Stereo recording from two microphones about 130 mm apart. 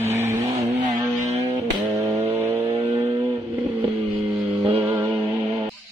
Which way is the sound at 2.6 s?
35° right (ahead or behind).